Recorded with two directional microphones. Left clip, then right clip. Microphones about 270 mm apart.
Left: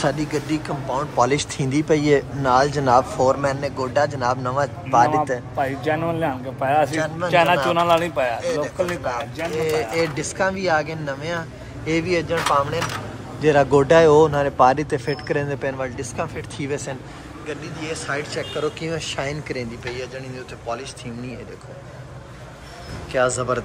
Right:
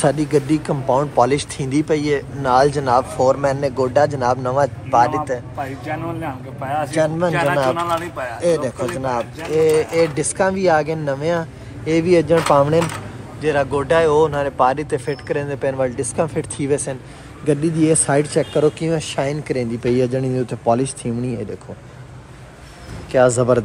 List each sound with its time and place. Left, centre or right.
0.0 s speech: centre
5.6 s speech: left
6.9 s speech: centre
7.7 s speech: left
8.4 s speech: centre
13.4 s speech: centre
23.1 s speech: centre